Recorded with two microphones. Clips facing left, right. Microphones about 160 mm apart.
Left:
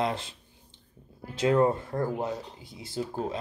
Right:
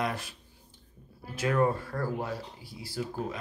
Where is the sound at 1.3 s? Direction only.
25° left (ahead or behind).